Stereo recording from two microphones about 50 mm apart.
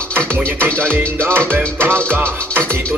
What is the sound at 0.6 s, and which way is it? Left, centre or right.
Music, right.